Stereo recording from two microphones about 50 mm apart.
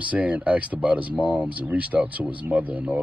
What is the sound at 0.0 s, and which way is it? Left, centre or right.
Speech, right.